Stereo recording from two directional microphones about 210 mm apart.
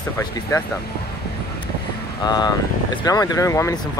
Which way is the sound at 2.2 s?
20° left (ahead or behind).